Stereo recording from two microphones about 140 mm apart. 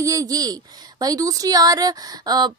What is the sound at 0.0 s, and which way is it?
A woman's voice, 25° right (ahead or behind).